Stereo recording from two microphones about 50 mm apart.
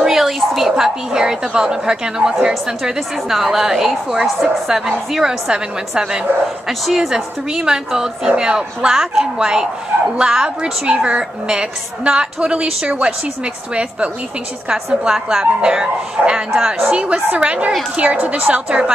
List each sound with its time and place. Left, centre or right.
0.0 s a woman's voice: centre; by 14.1 s right
14.7 s a woman's voice: centre